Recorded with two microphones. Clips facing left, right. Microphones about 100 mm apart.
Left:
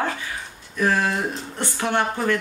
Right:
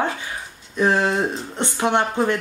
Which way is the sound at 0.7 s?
20° right (ahead or behind).